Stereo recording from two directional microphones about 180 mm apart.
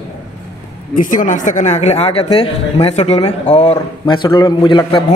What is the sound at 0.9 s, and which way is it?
Speech, 45° left (ahead or behind).